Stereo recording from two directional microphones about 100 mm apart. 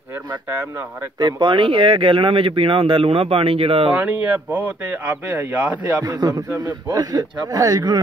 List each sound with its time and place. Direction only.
0.3 s speech: 20° right (ahead or behind)
1.2 s speech: 50° right (ahead or behind); by 3.9 s 70° right (ahead or behind)
3.9 s speech: 15° right (ahead or behind)
5.9 s a man's voice: 40° right (ahead or behind)